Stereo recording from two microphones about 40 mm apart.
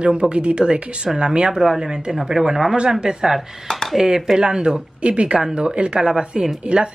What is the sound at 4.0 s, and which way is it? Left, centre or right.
Speech, centre.